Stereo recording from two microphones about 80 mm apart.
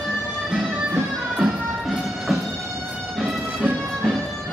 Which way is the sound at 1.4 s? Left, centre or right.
Centre.